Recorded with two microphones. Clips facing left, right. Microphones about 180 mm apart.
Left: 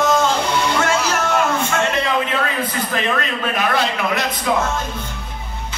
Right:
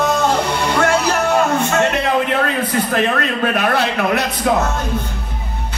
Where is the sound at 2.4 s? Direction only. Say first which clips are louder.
Right 4 dB; 60° right (ahead or behind).